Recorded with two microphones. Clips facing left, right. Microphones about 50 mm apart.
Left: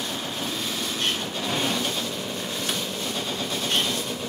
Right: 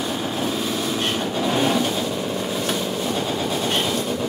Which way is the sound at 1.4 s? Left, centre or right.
Centre.